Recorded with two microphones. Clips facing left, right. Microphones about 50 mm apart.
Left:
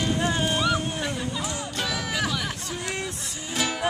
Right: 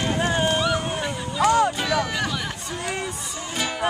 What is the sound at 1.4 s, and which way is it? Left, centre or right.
Music, right.